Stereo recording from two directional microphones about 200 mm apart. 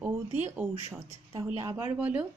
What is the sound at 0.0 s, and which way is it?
Speech, 5° right (ahead or behind).